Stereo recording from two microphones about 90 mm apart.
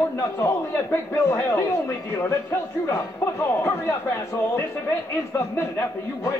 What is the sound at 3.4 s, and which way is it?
Speech, 35° left (ahead or behind).